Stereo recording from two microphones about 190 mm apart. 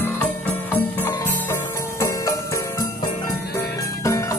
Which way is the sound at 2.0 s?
20° left (ahead or behind).